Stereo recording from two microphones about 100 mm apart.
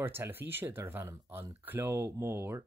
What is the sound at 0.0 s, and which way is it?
Speech, 20° right (ahead or behind).